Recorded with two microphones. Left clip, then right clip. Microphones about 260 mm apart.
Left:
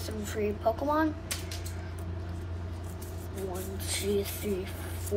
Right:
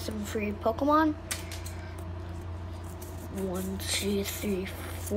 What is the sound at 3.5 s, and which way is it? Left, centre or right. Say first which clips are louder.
Speech: right 3 dB; centre.